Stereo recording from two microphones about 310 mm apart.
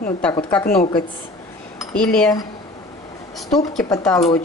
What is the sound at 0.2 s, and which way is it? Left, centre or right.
Speech, centre.